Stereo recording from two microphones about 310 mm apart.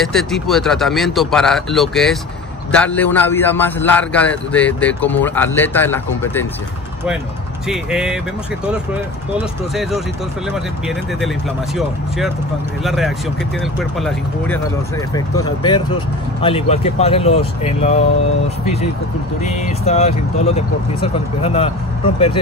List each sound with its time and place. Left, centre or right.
0.0 s a man's voice: centre
7.6 s a man's voice: centre
9.8 s a man's voice: centre
15.1 s speech: centre
19.6 s speech: left